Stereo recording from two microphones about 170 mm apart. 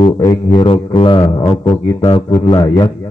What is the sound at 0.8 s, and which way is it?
A man's voice, 25° left (ahead or behind).